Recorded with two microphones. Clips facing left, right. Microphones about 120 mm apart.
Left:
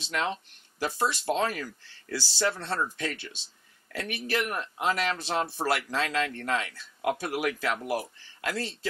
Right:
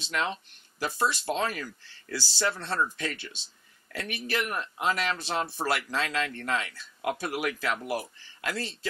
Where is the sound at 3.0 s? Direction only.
45° left (ahead or behind).